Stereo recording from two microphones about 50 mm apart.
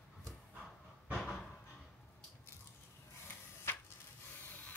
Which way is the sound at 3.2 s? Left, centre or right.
Left.